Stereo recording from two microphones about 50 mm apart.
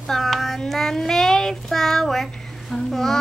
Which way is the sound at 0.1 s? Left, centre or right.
Centre.